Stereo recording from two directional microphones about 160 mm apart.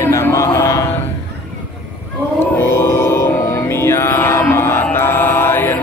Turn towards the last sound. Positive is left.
turn(degrees=10)  # may be behind; listen again after turning